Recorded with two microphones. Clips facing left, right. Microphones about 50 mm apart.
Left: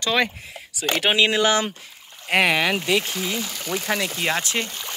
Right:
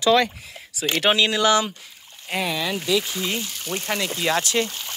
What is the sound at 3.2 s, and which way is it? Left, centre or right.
Speech, left.